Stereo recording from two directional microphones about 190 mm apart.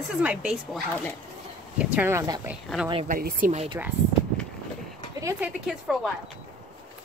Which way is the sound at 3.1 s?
50° right (ahead or behind).